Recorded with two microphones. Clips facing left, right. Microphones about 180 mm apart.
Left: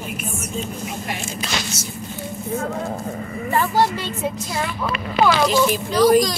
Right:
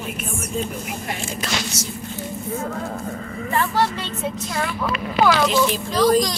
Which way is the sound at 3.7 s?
15° left (ahead or behind).